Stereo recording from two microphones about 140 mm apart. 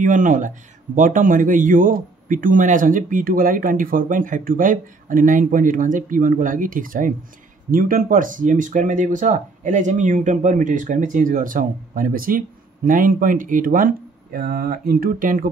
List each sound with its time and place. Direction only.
0.0 s speech: 65° right (ahead or behind)